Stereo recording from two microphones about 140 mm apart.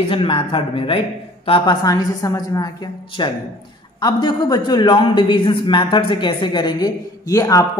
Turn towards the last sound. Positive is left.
turn(degrees=25)  # may be behind; listen again after turning